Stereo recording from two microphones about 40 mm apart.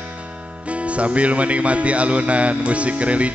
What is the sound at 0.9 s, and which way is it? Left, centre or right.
Speech, right.